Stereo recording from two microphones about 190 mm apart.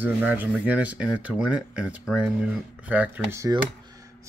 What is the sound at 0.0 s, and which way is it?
Speech, 10° right (ahead or behind).